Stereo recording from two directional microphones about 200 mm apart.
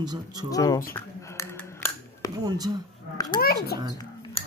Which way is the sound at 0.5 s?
15° left (ahead or behind).